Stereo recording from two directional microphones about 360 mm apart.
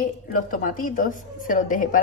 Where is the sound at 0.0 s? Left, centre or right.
Left.